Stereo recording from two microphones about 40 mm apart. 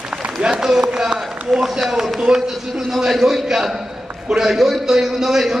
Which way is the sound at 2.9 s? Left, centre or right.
Centre.